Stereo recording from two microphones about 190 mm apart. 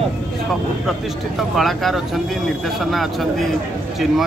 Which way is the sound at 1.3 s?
Centre (ahead or behind).